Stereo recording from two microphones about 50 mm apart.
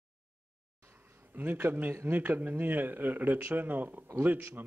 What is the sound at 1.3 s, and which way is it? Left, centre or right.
Speech, right.